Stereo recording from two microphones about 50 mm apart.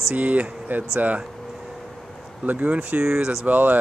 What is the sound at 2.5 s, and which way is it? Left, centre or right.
Speech, right.